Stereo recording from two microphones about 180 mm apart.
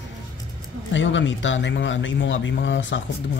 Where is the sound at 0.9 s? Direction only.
90° left.